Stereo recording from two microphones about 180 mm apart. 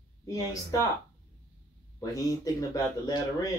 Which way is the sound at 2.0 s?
20° left (ahead or behind).